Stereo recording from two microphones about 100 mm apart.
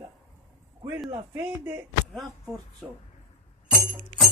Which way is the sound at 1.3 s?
25° right (ahead or behind).